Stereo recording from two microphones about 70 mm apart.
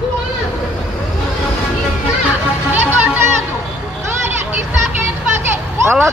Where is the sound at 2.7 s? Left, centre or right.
Right.